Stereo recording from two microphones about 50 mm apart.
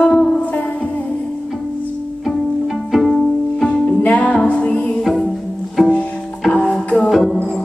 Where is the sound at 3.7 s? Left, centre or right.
Left.